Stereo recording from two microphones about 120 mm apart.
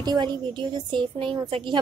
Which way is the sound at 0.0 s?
35° right (ahead or behind).